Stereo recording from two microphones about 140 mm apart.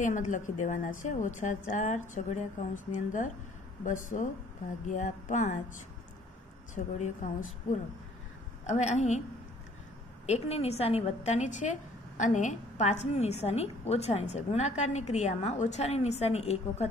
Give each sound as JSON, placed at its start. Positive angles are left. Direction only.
{"t": 0.0, "sound": "a woman's voice", "side_deg": 65}
{"t": 6.7, "sound": "a woman's voice", "side_deg": 65}
{"t": 8.6, "sound": "a woman's voice", "side_deg": 55}
{"t": 10.2, "sound": "a woman's voice", "side_deg": 50}